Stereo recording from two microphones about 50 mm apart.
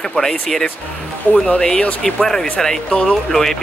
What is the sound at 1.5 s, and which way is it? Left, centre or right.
Speech, left.